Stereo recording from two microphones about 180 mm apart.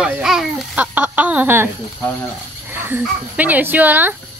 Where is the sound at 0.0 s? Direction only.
5° right (ahead or behind).